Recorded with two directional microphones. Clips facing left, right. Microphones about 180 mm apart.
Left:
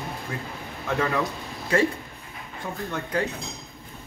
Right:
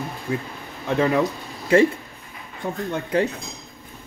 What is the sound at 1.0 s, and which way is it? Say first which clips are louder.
Speech: right 7 dB; 15° right (ahead or behind).